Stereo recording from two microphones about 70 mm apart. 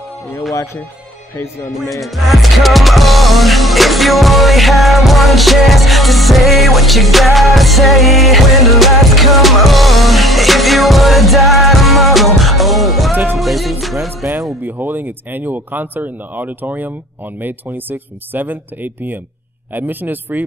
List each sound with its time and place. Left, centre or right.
1.8 s music: centre
13.1 s music: right
13.4 s music: centre
14.6 s speech: right